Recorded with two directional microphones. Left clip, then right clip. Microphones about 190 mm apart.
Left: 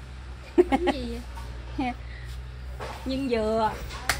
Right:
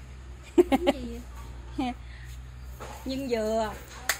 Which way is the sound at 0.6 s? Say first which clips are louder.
Even; 50° right (ahead or behind).